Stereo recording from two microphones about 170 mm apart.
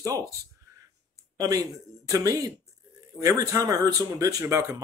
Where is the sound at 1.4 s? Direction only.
20° right (ahead or behind).